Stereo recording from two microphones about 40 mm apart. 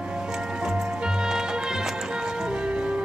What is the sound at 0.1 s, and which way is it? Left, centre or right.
Music, centre.